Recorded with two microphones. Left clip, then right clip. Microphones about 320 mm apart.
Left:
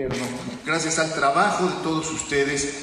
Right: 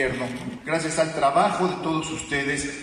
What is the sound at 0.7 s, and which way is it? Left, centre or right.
Speech, centre.